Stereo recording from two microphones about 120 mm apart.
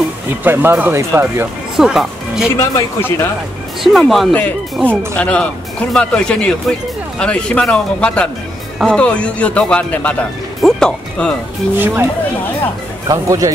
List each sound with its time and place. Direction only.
0.4 s speech: 15° right (ahead or behind)
1.8 s speech: 5° right (ahead or behind)
2.5 s speech: 20° left (ahead or behind)
3.8 s speech: centre (ahead or behind)
4.3 s speech: 15° left (ahead or behind)
11.7 s speech: 20° right (ahead or behind)
13.1 s a man's voice: 25° right (ahead or behind)